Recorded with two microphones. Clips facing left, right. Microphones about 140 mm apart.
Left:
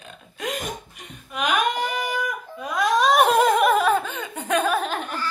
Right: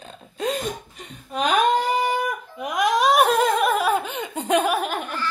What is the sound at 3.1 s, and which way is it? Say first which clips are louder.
Humming: left 1 dB; centre (ahead or behind).